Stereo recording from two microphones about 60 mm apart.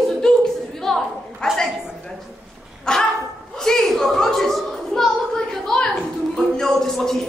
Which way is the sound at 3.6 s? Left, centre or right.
Centre.